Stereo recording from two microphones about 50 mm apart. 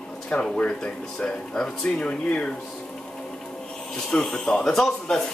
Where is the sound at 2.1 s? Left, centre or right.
Left.